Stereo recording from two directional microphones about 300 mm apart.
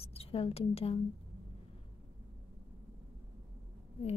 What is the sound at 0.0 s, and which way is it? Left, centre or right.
A woman's voice, centre.